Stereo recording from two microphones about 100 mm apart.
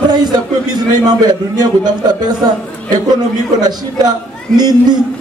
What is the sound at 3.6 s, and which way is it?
A man's voice, 45° right (ahead or behind).